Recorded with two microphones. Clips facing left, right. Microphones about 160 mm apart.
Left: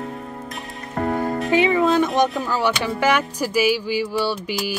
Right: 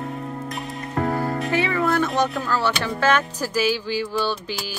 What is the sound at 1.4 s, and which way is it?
Music, 20° left (ahead or behind).